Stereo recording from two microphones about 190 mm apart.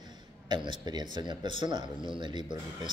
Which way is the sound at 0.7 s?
20° right (ahead or behind).